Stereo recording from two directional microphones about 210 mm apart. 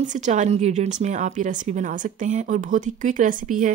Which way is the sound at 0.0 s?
35° right (ahead or behind).